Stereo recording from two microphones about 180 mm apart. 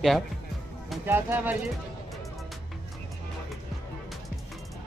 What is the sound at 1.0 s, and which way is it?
Speech, 10° right (ahead or behind).